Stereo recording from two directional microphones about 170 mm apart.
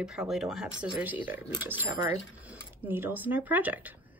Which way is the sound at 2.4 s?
10° right (ahead or behind).